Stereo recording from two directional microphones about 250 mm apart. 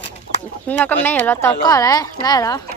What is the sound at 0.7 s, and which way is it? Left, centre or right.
A woman's voice, centre.